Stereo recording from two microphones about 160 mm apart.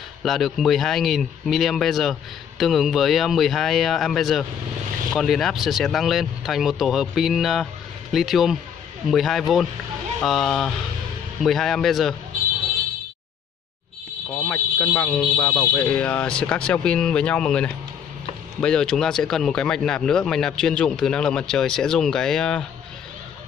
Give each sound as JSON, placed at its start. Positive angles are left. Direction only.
{"t": 0.2, "sound": "speech", "side_deg": 0}
{"t": 14.3, "sound": "speech", "side_deg": 10}